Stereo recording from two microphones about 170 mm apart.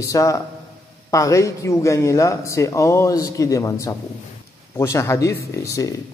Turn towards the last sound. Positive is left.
turn(degrees=20)  # may be behind; listen again after turning